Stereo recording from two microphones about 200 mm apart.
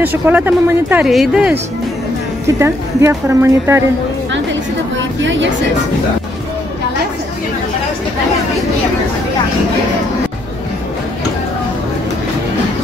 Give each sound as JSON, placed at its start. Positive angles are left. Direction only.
{"t": 0.0, "sound": "speech", "side_deg": -10}
{"t": 4.9, "sound": "a woman's voice", "side_deg": -65}